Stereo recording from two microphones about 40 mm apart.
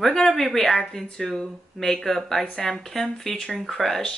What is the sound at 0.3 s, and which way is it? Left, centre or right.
Speech, centre.